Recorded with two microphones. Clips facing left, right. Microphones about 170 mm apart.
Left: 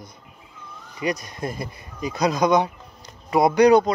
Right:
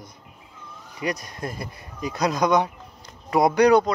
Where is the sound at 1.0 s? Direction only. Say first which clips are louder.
Left 2 dB; 15° left (ahead or behind).